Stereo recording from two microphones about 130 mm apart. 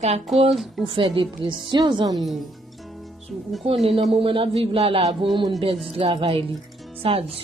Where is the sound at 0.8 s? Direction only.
40° right (ahead or behind).